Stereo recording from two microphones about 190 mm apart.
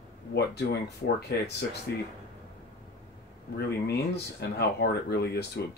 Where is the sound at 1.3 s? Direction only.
60° left (ahead or behind).